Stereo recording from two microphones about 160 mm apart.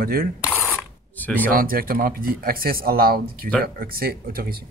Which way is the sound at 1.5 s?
65° right (ahead or behind).